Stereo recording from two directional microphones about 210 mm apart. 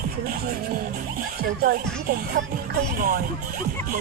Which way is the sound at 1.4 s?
45° right (ahead or behind).